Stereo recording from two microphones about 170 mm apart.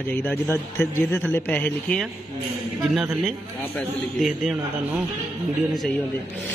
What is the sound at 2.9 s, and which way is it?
Speech, 5° right (ahead or behind).